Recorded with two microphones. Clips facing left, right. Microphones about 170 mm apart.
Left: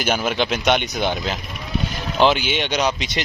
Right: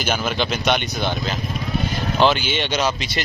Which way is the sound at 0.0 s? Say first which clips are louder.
Left 2 dB; 10° left (ahead or behind).